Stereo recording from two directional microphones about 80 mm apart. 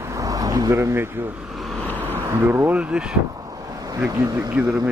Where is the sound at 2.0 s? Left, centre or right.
Right.